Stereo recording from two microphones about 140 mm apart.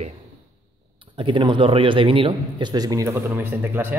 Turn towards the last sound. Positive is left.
turn(degrees=-15)  # may be behind; listen again after turning